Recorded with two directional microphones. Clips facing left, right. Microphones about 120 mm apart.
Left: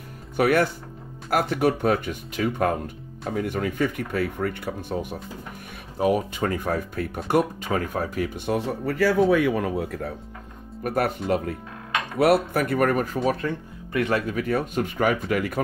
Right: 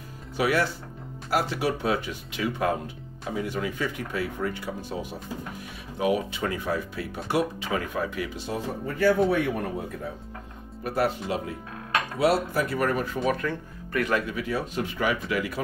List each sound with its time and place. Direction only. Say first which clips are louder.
0.4 s speech: left 4 dB; 55° left (ahead or behind)
5.9 s speech: left 3 dB; 45° left (ahead or behind); by 10.1 s 85° left
10.8 s speech: left 2 dB; 55° left (ahead or behind); by 13.5 s 35° left (ahead or behind)
13.5 s speech: left 2 dB; 25° left (ahead or behind)
14.3 s speech: left 4 dB; 50° left (ahead or behind)